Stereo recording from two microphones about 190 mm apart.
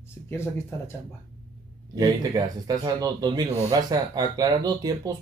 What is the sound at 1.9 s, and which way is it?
Speech, 20° right (ahead or behind).